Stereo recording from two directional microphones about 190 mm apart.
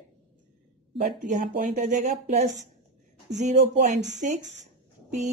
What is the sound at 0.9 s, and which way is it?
Speech, 40° right (ahead or behind).